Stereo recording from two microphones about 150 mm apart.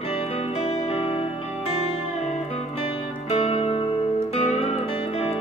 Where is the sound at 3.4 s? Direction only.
45° left (ahead or behind).